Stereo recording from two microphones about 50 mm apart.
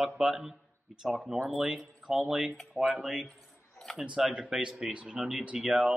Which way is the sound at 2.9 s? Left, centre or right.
Centre.